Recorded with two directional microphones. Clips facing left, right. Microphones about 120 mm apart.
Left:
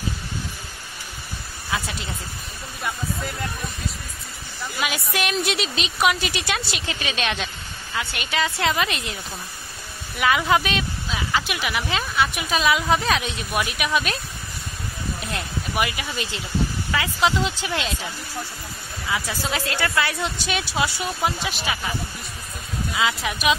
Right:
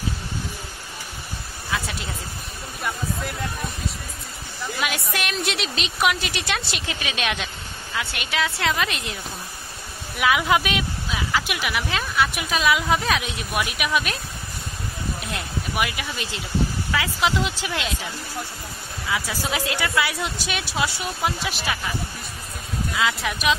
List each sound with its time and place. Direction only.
1.7 s a sound: 5° left (ahead or behind)
4.7 s speech: centre (ahead or behind)
15.3 s speech: centre (ahead or behind)
19.4 s speech: 15° right (ahead or behind)
22.9 s speech: 5° left (ahead or behind)